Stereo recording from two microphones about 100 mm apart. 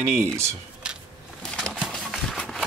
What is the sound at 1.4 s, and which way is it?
Bird, 10° left (ahead or behind).